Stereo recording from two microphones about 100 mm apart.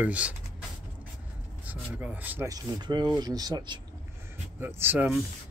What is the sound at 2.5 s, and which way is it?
Speech, 45° right (ahead or behind).